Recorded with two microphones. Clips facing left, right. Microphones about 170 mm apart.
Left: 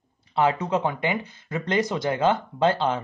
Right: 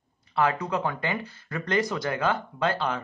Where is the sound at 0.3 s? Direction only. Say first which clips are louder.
Left 3 dB; 20° left (ahead or behind).